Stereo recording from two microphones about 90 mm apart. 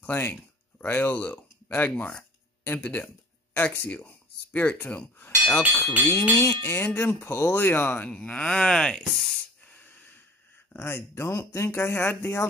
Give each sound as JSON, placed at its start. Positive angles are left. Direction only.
{"t": 0.0, "sound": "speech", "side_deg": 20}
{"t": 5.8, "sound": "speech", "side_deg": 30}
{"t": 9.6, "sound": "breathing", "side_deg": 20}
{"t": 10.7, "sound": "speech", "side_deg": 25}